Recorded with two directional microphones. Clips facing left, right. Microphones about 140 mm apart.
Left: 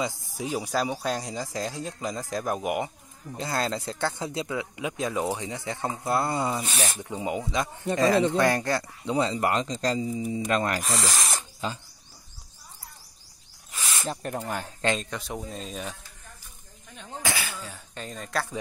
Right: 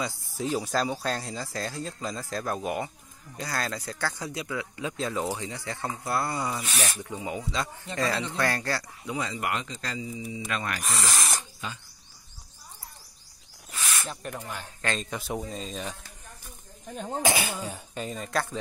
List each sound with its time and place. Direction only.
0.0 s speech: 15° left (ahead or behind)
9.1 s speech: 35° left (ahead or behind)
11.0 s a sound: 30° left (ahead or behind)
14.0 s speech: 35° left (ahead or behind)
15.0 s speech: 5° right (ahead or behind)
16.9 s speech: 40° right (ahead or behind)
17.2 s speech: 20° right (ahead or behind)
17.9 s speech: 5° right (ahead or behind)